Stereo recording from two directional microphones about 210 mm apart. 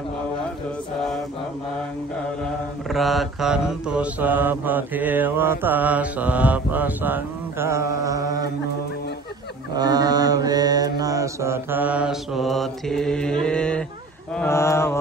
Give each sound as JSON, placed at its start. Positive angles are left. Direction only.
{"t": 2.9, "sound": "mantra", "side_deg": 0}
{"t": 9.8, "sound": "mantra", "side_deg": -20}